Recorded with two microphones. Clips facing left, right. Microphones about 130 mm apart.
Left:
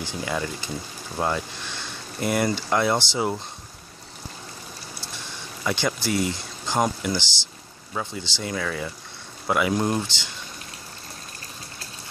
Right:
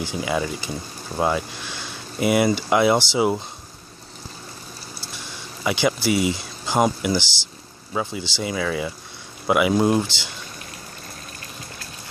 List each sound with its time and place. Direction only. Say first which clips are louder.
0.2 s speech: right 3 dB; 10° right (ahead or behind)
5.6 s speech: right 4 dB; 10° right (ahead or behind)